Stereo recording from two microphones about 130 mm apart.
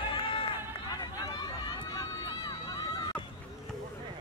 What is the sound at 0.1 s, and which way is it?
Run, 40° left (ahead or behind).